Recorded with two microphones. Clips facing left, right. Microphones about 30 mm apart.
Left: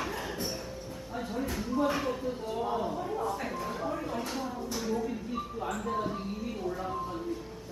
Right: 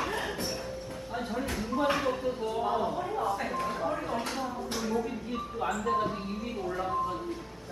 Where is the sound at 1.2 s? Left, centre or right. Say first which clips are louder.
Right 1 dB; right.